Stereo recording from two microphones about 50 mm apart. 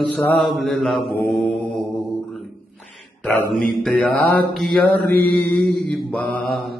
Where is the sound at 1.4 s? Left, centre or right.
Left.